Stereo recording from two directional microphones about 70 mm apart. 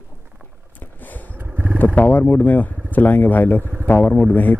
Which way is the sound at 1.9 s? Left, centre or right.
Left.